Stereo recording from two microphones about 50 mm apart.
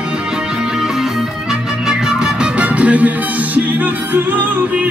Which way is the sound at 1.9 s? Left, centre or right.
Centre.